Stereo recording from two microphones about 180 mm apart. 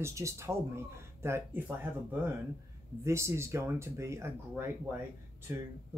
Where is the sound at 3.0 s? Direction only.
15° right (ahead or behind).